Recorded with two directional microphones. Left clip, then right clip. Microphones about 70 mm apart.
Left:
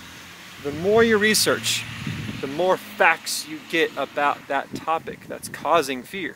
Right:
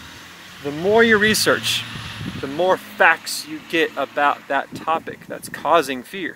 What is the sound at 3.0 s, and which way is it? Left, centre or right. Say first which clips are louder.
Speech: right 4 dB; centre.